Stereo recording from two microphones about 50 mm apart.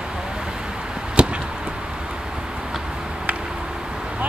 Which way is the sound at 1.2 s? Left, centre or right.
Right.